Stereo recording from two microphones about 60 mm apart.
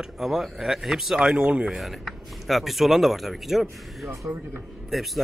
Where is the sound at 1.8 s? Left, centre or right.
Centre.